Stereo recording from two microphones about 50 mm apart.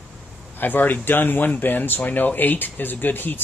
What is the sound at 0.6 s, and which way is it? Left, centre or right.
Speech, left.